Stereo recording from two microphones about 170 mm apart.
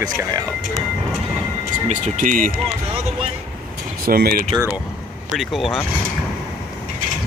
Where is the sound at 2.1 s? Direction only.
50° right (ahead or behind).